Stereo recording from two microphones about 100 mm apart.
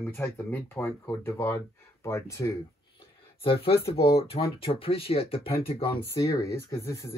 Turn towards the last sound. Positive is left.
turn(degrees=30)  # may be behind; listen again after turning